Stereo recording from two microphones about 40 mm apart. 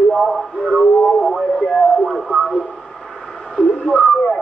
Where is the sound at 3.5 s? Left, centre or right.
Centre.